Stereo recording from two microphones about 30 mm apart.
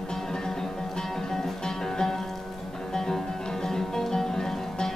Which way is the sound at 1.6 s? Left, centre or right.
Centre.